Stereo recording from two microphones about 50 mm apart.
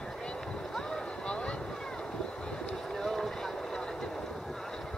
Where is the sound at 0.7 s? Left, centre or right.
Centre.